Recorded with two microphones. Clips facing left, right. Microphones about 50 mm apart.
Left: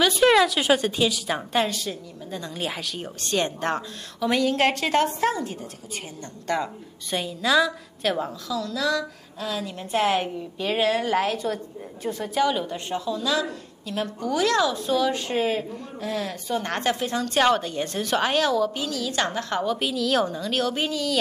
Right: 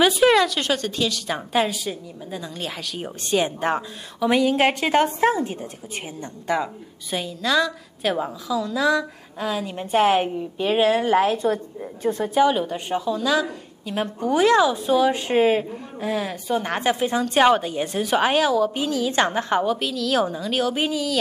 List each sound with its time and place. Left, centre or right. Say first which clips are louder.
0.1 s a woman's voice: right 1 dB; centre
2.5 s a woman's voice: left 1 dB; centre
3.0 s a woman's voice: right 4 dB; centre
6.4 s a woman's voice: right 2 dB; centre
7.2 s a woman's voice: even; centre
18.8 s a woman's voice: right 5 dB; right
19.8 s a woman's voice: right 1 dB; centre